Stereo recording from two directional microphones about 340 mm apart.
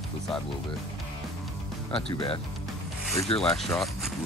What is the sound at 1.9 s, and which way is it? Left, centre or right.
Speech, centre.